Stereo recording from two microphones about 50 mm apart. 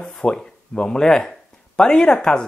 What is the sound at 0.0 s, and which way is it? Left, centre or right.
Speech, centre.